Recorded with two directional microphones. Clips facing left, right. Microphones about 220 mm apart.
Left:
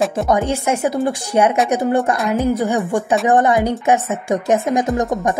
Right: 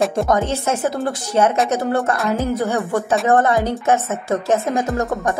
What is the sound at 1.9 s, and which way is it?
Speech, 15° left (ahead or behind).